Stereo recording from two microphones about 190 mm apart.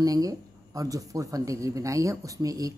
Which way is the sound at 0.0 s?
20° right (ahead or behind).